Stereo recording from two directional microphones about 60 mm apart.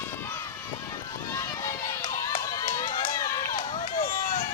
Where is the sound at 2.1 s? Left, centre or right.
Left.